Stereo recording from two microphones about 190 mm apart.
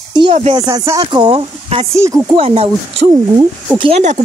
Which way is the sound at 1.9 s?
15° right (ahead or behind).